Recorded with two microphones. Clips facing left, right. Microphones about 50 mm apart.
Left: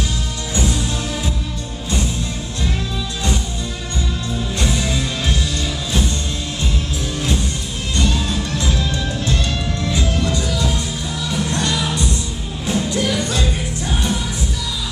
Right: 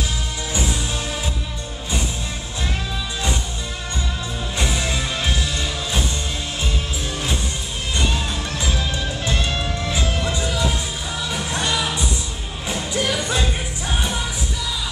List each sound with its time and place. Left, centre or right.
0.6 s music: centre
4.6 s music: centre
7.9 s music: centre